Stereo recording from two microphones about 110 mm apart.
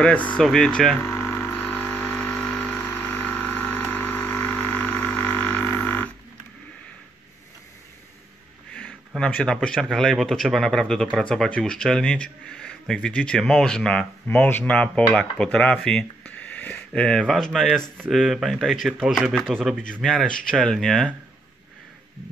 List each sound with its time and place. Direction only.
0.0 s speech: 15° left (ahead or behind)
1.0 s a sound: 25° left (ahead or behind)
2.5 s vehicle: 15° left (ahead or behind)
9.1 s speech: 10° left (ahead or behind)